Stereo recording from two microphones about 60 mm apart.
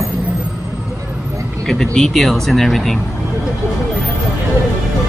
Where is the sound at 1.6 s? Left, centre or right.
Centre.